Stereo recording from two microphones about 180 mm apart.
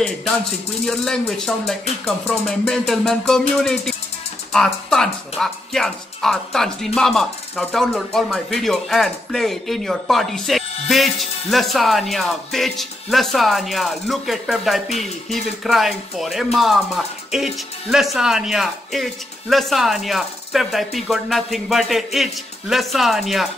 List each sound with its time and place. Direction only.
0.8 s speech: centre (ahead or behind)